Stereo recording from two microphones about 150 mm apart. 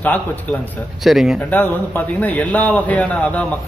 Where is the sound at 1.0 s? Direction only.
Centre (ahead or behind).